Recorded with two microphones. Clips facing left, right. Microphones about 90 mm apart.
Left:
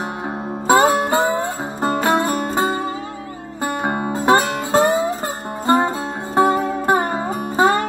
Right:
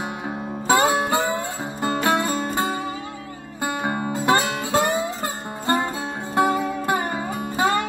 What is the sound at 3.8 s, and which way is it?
Music, 35° left (ahead or behind).